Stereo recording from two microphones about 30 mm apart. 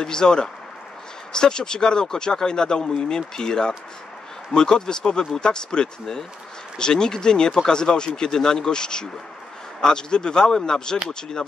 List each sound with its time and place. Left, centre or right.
0.0 s speech: left
8.3 s speech: centre